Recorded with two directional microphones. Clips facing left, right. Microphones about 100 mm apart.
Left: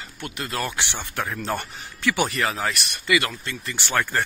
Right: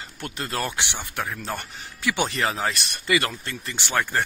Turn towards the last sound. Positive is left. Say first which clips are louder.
# left 1 dB
turn(degrees=-15)  # may be behind; listen again after turning